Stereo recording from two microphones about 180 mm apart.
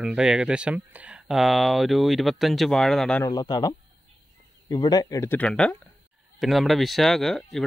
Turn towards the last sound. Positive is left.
turn(degrees=0)  # may be behind; listen again after turning